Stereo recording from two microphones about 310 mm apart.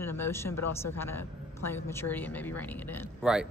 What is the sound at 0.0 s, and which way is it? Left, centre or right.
A man's voice, centre.